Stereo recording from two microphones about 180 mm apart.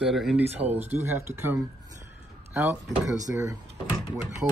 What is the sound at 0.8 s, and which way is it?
Speech, 40° right (ahead or behind).